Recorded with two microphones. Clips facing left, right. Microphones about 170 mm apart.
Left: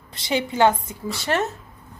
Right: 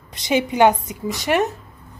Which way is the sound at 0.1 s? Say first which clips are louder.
Right 4 dB; 20° right (ahead or behind).